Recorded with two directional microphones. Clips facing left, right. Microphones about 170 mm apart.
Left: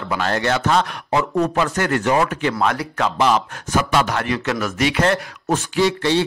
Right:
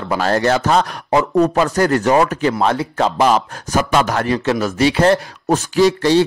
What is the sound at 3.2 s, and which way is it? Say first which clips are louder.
Speech: right 1 dB; 40° right (ahead or behind).